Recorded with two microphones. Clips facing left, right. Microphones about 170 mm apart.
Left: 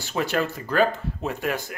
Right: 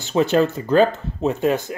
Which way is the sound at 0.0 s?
20° right (ahead or behind).